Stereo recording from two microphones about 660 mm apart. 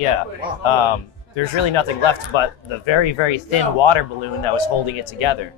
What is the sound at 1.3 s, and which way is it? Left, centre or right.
Speech, left.